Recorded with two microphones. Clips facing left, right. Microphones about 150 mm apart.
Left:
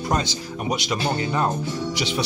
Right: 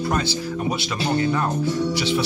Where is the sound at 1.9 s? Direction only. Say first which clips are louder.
Right 4 dB; 15° left (ahead or behind).